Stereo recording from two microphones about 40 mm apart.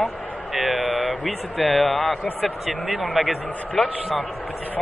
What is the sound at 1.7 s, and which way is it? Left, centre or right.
Speech, centre.